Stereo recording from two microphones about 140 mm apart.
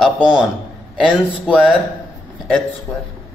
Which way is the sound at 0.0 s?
5° right (ahead or behind).